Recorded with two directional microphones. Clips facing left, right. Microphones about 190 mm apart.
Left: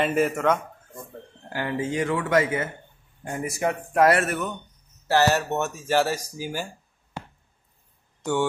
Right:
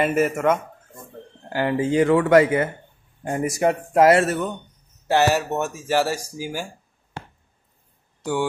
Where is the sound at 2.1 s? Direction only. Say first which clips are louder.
Right 7 dB; 60° right (ahead or behind).